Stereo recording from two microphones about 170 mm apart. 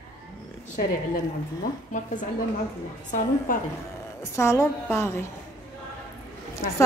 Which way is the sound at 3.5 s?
55° left (ahead or behind).